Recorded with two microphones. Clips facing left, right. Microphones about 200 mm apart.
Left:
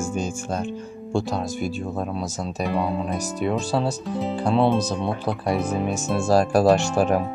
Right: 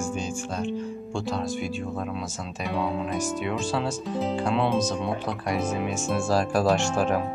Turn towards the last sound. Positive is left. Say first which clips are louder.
# left 4 dB
turn(degrees=35)  # may be behind; listen again after turning